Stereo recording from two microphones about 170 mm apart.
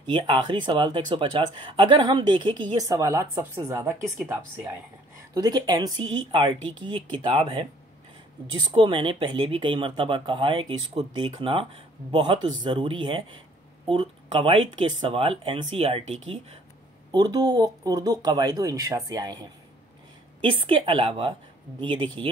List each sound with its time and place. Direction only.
0.0 s speech: 30° right (ahead or behind)
8.7 s speech: 30° right (ahead or behind)
17.1 s speech: 25° right (ahead or behind)
20.4 s speech: 30° right (ahead or behind)